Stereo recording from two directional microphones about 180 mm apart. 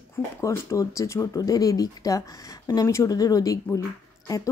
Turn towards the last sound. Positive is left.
turn(degrees=20)  # may be behind; listen again after turning